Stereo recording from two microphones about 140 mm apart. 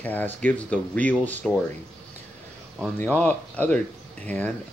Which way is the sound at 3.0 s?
10° left (ahead or behind).